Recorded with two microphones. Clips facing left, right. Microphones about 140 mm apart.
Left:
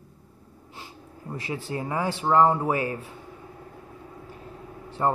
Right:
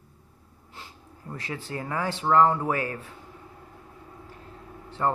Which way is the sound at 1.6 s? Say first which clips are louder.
Left 2 dB; 20° left (ahead or behind).